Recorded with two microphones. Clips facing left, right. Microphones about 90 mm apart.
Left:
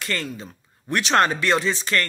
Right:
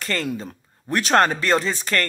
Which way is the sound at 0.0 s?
40° right (ahead or behind).